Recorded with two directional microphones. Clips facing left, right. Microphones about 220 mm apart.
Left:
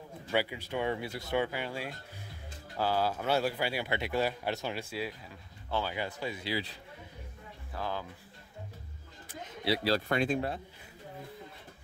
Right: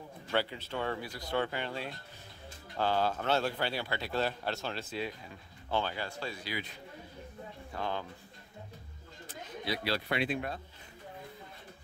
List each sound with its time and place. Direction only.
0.3 s speech: 10° left (ahead or behind)
1.3 s speech: 10° left (ahead or behind)
5.9 s speech: 15° left (ahead or behind)
7.7 s speech: 5° left (ahead or behind)
9.7 s speech: 40° left (ahead or behind)